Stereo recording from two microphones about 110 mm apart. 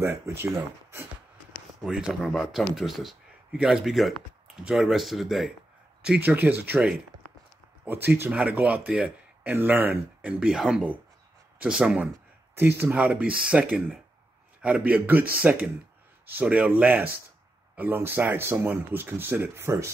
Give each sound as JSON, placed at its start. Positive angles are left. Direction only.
{"t": 0.0, "sound": "speech", "side_deg": -20}
{"t": 1.9, "sound": "speech", "side_deg": -5}
{"t": 6.0, "sound": "speech", "side_deg": -15}
{"t": 12.5, "sound": "speech", "side_deg": -20}